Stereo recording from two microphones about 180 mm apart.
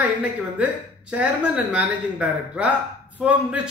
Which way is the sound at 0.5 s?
5° right (ahead or behind).